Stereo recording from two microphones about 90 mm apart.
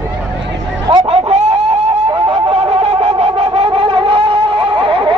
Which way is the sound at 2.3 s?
90° right.